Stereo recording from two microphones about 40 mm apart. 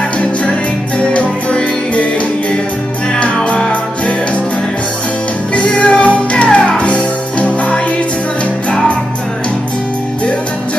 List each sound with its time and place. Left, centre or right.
0.9 s music: left
5.5 s music: left